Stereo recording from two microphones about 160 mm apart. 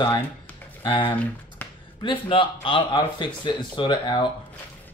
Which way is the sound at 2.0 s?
35° left (ahead or behind).